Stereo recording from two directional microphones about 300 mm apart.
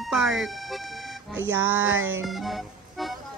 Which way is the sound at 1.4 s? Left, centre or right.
Right.